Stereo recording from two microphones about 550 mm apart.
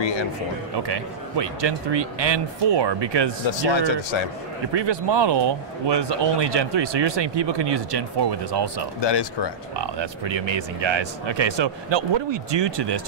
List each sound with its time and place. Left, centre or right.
0.0 s a man's voice: left
0.7 s speech: right
3.7 s speech: left
4.7 s speech: right
9.0 s speech: left
9.8 s speech: right